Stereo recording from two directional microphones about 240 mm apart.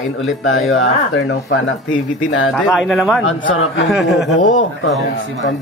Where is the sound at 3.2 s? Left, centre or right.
Left.